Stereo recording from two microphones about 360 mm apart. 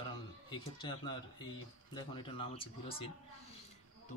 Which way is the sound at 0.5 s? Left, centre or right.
Centre.